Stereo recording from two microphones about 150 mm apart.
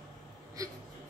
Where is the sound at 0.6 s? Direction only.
20° right (ahead or behind).